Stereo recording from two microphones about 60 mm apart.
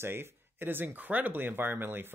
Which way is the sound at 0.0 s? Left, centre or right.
Right.